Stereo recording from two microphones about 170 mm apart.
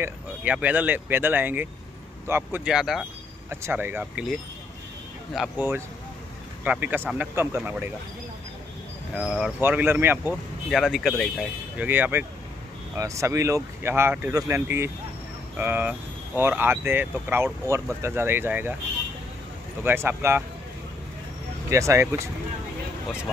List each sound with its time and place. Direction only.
0.0 s speech: 10° right (ahead or behind)
9.1 s speech: 5° right (ahead or behind)
10.7 s speech: centre (ahead or behind)
11.8 s speech: 10° right (ahead or behind)
19.8 s speech: 15° right (ahead or behind)
21.6 s speech: 15° right (ahead or behind)